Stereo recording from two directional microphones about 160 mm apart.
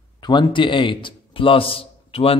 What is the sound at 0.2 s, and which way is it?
Speech, 30° left (ahead or behind).